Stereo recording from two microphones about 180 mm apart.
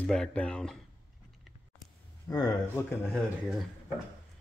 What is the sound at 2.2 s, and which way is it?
Speech, 20° left (ahead or behind).